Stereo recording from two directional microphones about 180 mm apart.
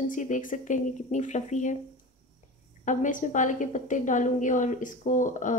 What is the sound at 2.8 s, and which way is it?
Speech, 45° left (ahead or behind).